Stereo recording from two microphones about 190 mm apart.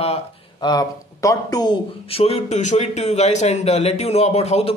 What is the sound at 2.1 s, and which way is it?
Speech, 30° left (ahead or behind).